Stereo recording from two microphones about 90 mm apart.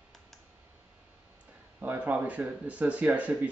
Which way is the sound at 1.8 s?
20° right (ahead or behind).